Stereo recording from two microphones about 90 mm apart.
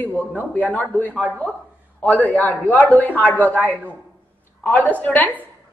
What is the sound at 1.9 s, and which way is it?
Speech, 15° left (ahead or behind).